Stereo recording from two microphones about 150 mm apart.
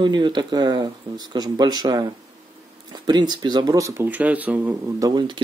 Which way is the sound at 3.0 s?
30° right (ahead or behind).